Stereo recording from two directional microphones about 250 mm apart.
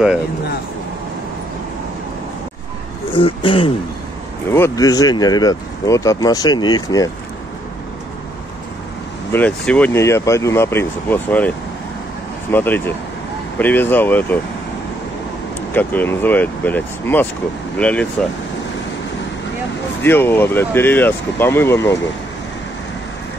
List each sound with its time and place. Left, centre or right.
3.1 s speech: left
4.5 s speech: centre
9.3 s speech: centre
15.7 s speech: centre
20.0 s speech: centre